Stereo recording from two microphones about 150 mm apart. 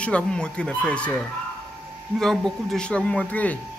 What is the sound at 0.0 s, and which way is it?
Speech, 5° left (ahead or behind).